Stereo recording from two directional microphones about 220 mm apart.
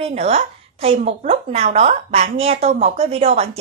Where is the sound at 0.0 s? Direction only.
30° right (ahead or behind).